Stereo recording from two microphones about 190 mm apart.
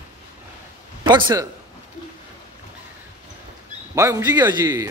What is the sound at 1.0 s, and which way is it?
Speech, 25° right (ahead or behind).